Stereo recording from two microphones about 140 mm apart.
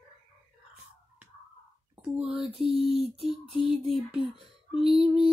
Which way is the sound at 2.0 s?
10° right (ahead or behind).